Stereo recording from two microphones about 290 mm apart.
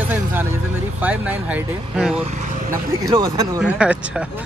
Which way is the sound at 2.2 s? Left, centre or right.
Right.